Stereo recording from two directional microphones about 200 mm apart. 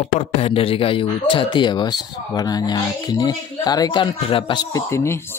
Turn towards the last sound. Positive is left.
turn(degrees=10)  # may be behind; listen again after turning